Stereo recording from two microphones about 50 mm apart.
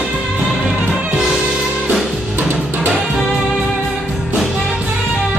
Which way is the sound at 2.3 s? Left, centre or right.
Right.